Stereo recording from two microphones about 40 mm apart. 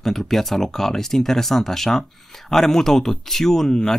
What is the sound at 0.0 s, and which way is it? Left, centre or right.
Speech, centre.